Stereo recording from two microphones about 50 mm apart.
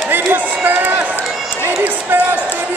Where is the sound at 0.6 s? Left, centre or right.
Right.